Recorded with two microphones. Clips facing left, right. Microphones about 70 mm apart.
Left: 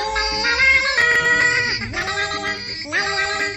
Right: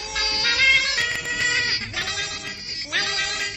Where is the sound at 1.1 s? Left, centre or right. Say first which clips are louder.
Left 11 dB; left.